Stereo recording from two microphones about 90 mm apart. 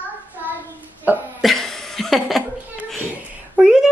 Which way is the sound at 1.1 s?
20° right (ahead or behind).